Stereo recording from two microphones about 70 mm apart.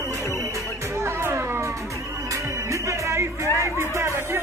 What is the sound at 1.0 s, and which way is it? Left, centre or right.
Music, right.